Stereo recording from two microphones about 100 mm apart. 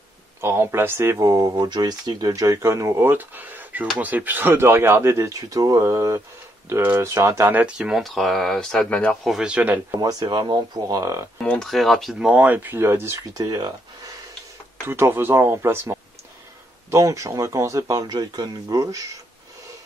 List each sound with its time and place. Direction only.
0.4 s speech: 25° right (ahead or behind)
7.5 s speech: 10° right (ahead or behind); by 9.2 s 10° left (ahead or behind)
9.2 s speech: 5° right (ahead or behind)
9.9 s speech: 40° right (ahead or behind)
10.9 s speech: 30° right (ahead or behind)
11.3 s speech: 10° left (ahead or behind); by 14.1 s 40° right (ahead or behind)
14.9 s speech: 25° right (ahead or behind)
18.1 s speech: 45° right (ahead or behind)